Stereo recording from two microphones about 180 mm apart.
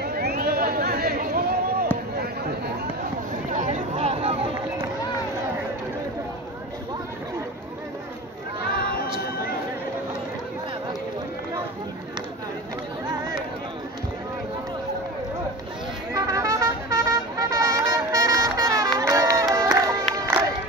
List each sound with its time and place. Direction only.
0.0 s chatter: 60° right (ahead or behind)
3.5 s a sound: 45° right (ahead or behind)
16.1 s vehicle: 20° right (ahead or behind)
18.9 s crowd: 20° right (ahead or behind)
20.2 s music: 20° right (ahead or behind)